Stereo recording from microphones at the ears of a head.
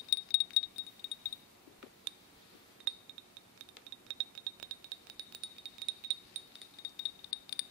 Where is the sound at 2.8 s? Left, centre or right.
Right.